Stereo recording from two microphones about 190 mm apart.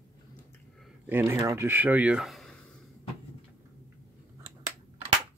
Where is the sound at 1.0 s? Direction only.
10° right (ahead or behind).